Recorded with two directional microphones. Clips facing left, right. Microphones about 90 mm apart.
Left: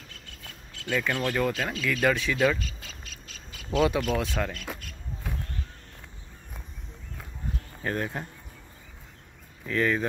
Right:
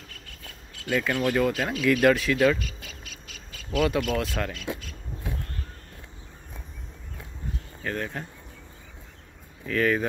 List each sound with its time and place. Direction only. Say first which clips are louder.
0.8 s speech: right 3 dB; 10° right (ahead or behind)
2.6 s bird: right 1 dB; 30° left (ahead or behind)
3.9 s speech: right 1 dB; centre (ahead or behind)
7.8 s speech: left 1 dB; 25° left (ahead or behind)
9.8 s speech: right 2 dB; centre (ahead or behind)